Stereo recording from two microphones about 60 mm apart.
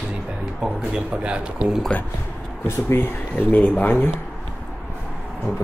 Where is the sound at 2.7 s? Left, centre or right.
Left.